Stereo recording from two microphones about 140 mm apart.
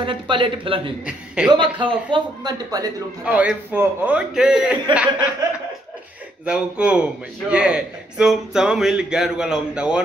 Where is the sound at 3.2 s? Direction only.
10° right (ahead or behind).